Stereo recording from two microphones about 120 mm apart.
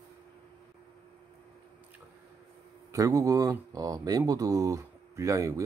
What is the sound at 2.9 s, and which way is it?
Speech, 25° right (ahead or behind).